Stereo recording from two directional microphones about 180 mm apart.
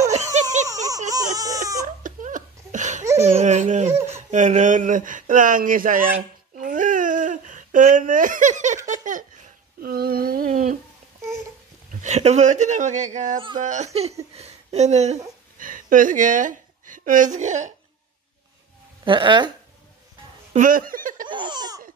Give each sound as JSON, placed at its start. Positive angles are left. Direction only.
{"t": 0.1, "sound": "a sound", "side_deg": -40}
{"t": 0.7, "sound": "baby cry", "side_deg": -20}
{"t": 2.0, "sound": "laughter", "side_deg": -45}
{"t": 3.3, "sound": "speech", "side_deg": -40}
{"t": 3.9, "sound": "laughter", "side_deg": -15}
{"t": 4.3, "sound": "speech", "side_deg": -40}
{"t": 6.1, "sound": "babbling", "side_deg": -45}
{"t": 8.8, "sound": "a sound", "side_deg": -45}
{"t": 12.0, "sound": "speech", "side_deg": -40}
{"t": 15.6, "sound": "a woman's voice", "side_deg": -50}
{"t": 19.0, "sound": "laughter", "side_deg": -25}
{"t": 20.5, "sound": "speech", "side_deg": -50}
{"t": 21.3, "sound": "laughter", "side_deg": -25}